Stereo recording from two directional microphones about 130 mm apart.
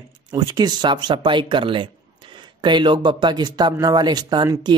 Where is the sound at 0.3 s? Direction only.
30° right (ahead or behind).